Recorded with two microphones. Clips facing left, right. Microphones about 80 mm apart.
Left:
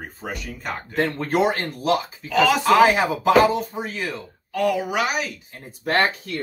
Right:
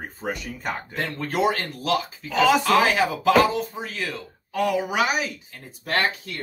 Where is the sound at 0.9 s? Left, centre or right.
Left.